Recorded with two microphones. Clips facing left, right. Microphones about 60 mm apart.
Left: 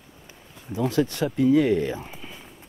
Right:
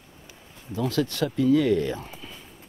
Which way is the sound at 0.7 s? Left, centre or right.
Left.